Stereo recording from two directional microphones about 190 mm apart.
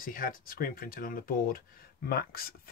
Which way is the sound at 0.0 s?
50° left (ahead or behind).